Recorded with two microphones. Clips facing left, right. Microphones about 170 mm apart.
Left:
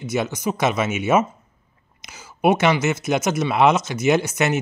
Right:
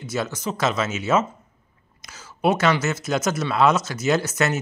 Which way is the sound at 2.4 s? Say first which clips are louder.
Left 3 dB; 15° left (ahead or behind).